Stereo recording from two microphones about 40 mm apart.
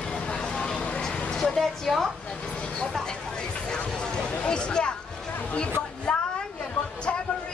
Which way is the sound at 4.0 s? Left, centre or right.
Centre.